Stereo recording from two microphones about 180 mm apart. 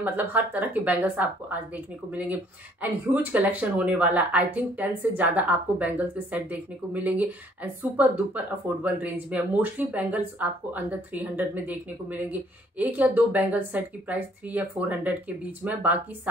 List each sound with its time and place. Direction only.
0.0 s speech: 10° right (ahead or behind)